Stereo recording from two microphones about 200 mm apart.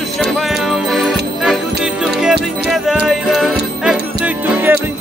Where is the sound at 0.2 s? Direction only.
Centre (ahead or behind).